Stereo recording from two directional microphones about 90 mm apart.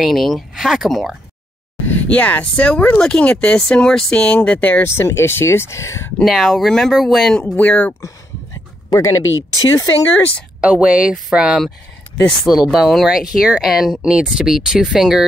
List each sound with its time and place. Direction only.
0.0 s speech: centre (ahead or behind)
1.9 s speech: 20° left (ahead or behind)
4.8 s speech: 30° left (ahead or behind)
6.2 s speech: centre (ahead or behind)
7.4 s speech: 15° left (ahead or behind)
8.9 s speech: 40° left (ahead or behind)
10.6 s speech: 15° right (ahead or behind)
12.7 s speech: 5° right (ahead or behind)